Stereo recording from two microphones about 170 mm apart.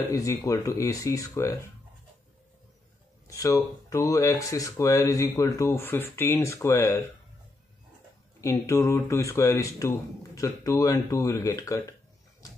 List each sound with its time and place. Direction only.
0.1 s speech: 20° left (ahead or behind)
3.3 s speech: 20° left (ahead or behind)
8.4 s speech: 20° left (ahead or behind)